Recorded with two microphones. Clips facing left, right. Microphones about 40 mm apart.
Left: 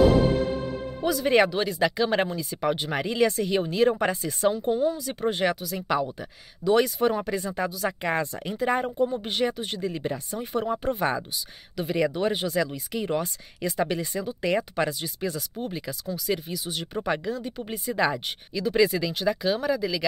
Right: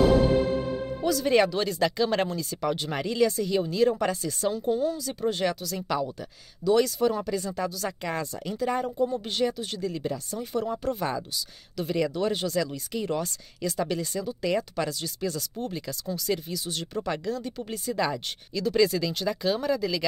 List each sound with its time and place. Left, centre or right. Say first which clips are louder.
1.0 s speech: left 1 dB; left
3.2 s speech: left 1 dB; left; by 20.1 s centre